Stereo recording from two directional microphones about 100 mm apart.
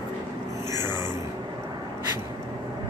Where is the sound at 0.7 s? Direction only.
40° left (ahead or behind).